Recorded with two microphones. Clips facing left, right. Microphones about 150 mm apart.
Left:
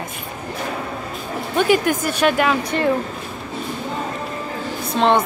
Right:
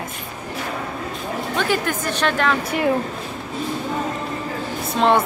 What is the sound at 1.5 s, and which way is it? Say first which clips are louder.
A woman's voice: left 6 dB; 15° left (ahead or behind).